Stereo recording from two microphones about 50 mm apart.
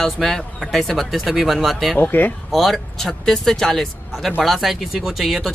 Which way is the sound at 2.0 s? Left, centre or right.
Left.